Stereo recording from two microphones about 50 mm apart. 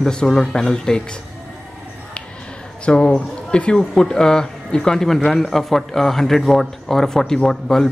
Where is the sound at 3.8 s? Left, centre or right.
Centre.